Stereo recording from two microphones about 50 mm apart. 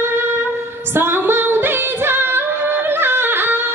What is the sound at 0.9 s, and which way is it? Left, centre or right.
Singing, right.